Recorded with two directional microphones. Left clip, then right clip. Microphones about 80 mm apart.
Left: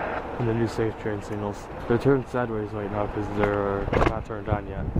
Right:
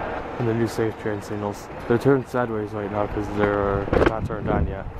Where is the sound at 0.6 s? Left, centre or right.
Centre.